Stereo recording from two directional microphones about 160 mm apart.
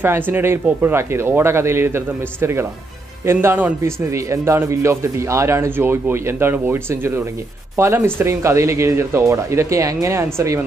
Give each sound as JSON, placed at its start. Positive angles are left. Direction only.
{"t": 0.3, "sound": "a man's voice", "side_deg": -15}